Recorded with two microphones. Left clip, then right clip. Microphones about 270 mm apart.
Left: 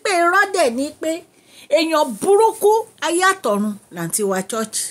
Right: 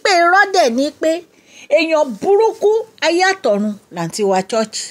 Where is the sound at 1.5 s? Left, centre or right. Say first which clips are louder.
Right 3 dB; centre.